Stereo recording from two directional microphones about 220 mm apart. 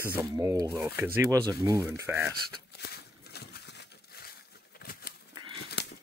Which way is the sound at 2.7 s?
45° left (ahead or behind).